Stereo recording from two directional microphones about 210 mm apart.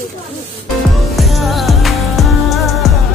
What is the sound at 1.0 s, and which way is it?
Music, centre (ahead or behind).